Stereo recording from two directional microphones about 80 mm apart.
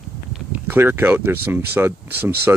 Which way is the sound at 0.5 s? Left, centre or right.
Right.